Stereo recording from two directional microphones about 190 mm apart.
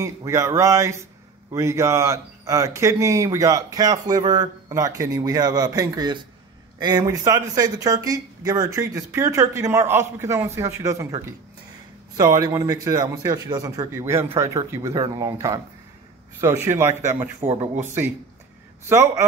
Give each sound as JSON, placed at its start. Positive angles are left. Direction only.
{"t": 0.0, "sound": "speech", "side_deg": -15}
{"t": 16.6, "sound": "speech", "side_deg": -15}